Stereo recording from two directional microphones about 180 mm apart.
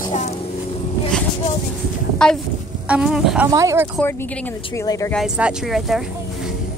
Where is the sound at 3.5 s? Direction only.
15° right (ahead or behind).